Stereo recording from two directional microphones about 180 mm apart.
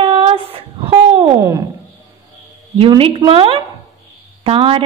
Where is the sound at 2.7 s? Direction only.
30° right (ahead or behind).